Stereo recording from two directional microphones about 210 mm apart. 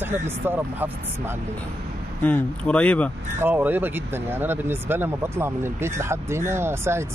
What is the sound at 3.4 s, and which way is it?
Speech, 10° right (ahead or behind).